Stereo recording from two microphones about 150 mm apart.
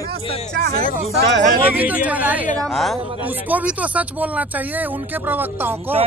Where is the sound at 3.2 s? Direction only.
10° right (ahead or behind).